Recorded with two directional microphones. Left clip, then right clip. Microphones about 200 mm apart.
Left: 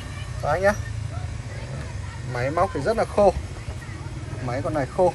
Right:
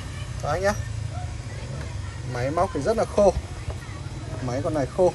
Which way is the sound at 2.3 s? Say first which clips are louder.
Left 1 dB; 10° right (ahead or behind).